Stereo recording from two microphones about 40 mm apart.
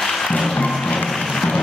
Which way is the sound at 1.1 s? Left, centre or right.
Centre.